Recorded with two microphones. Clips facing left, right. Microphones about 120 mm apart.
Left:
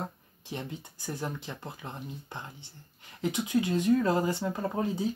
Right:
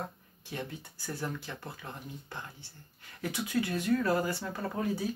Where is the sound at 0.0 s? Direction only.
20° left (ahead or behind).